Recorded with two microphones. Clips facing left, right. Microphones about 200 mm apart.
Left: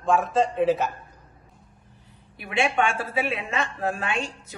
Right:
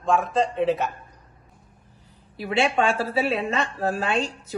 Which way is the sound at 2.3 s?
30° right (ahead or behind).